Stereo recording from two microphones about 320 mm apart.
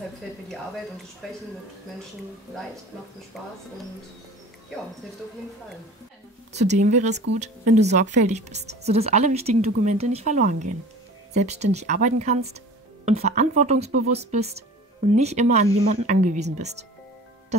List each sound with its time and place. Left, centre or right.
1.2 s speech: centre
3.3 s speech: centre
6.5 s speech: right